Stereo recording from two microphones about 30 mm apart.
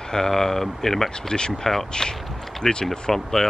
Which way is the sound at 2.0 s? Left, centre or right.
Centre.